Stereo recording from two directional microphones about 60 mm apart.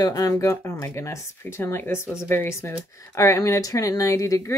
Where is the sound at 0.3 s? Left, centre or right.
Left.